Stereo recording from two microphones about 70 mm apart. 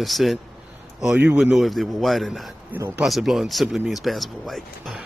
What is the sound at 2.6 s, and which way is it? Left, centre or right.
Speech, right.